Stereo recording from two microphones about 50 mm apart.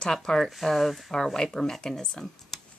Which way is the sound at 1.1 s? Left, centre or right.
Centre.